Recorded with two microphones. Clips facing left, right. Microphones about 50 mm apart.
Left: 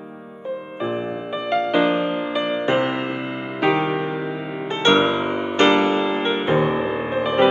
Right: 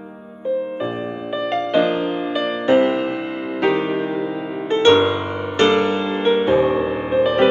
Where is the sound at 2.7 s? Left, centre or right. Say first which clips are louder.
Right 8 dB; left.